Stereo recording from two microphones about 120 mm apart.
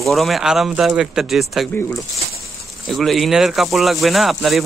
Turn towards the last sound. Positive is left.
turn(degrees=0)  # may be behind; listen again after turning